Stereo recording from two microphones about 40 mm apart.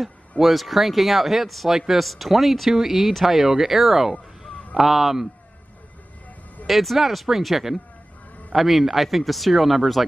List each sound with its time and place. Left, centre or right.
0.4 s speech: centre
6.7 s speech: centre